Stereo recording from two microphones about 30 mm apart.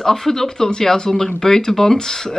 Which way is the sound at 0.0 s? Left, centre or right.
Centre.